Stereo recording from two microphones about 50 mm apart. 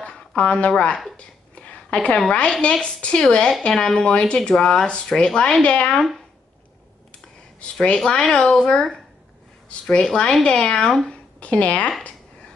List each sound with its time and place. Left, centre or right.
0.4 s a woman's voice: left
1.1 s a sound: left
2.0 s a woman's voice: centre
7.8 s a woman's voice: centre
11.3 s a woman's voice: left